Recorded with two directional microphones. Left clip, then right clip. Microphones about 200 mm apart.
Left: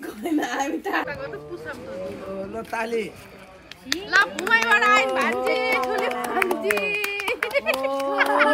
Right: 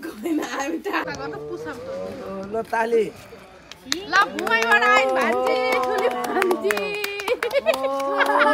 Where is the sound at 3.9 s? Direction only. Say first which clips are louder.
Even; 40° right (ahead or behind).